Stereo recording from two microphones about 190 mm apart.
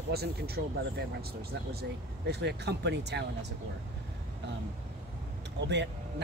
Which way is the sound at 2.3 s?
60° right (ahead or behind).